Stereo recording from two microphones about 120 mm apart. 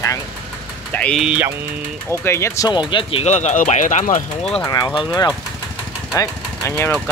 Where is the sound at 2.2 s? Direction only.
20° left (ahead or behind).